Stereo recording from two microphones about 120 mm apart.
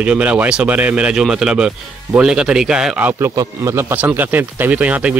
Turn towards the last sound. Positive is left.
turn(degrees=-10)  # may be behind; listen again after turning